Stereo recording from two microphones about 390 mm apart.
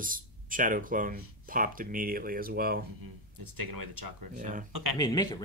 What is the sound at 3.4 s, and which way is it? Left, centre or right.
Speech, right.